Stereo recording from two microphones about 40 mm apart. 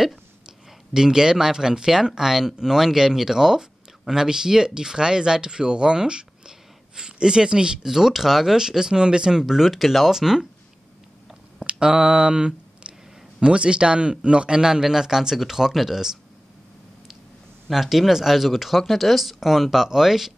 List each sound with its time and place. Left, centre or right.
0.5 s speech: centre
11.6 s a sound: right
13.4 s a man's voice: right
17.6 s speech: centre